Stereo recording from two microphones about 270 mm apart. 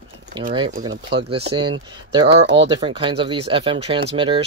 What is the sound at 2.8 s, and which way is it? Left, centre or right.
Speech, centre.